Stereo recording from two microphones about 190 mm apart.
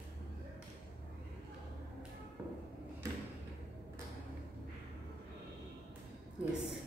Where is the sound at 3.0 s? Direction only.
15° right (ahead or behind).